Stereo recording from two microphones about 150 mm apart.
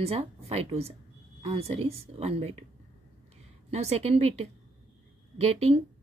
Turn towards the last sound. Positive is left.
turn(degrees=-40)  # may be behind; listen again after turning